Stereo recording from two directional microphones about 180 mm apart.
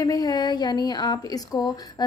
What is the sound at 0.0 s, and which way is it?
Speech, 20° left (ahead or behind).